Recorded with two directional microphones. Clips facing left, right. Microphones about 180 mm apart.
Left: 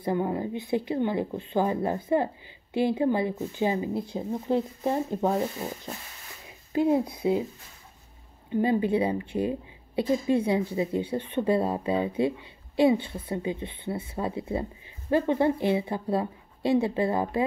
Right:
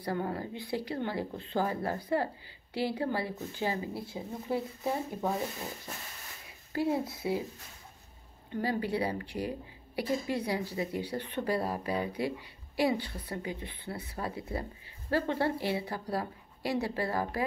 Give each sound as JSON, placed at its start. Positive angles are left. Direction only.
{"t": 0.0, "sound": "speech", "side_deg": 20}
{"t": 6.7, "sound": "speech", "side_deg": 20}
{"t": 8.5, "sound": "speech", "side_deg": 20}